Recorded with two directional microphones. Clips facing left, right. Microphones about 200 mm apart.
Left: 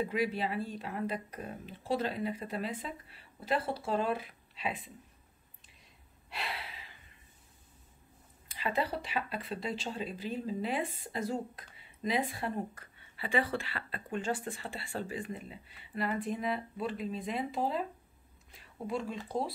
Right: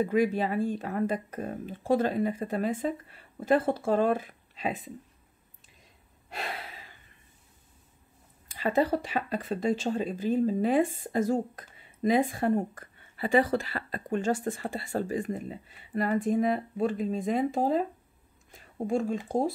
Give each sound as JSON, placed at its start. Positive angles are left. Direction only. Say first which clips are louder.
{"t": 0.0, "sound": "speech", "louder": "right 7 dB", "side_deg": -45}
{"t": 6.3, "sound": "gasp", "louder": "right 4 dB", "side_deg": -45}
{"t": 8.5, "sound": "speech", "louder": "right 8 dB", "side_deg": -45}